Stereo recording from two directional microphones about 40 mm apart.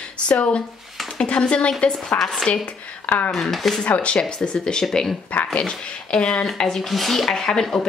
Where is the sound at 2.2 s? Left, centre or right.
Centre.